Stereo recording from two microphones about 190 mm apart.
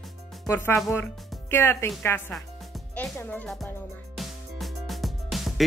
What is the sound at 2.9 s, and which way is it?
Speech, 5° left (ahead or behind).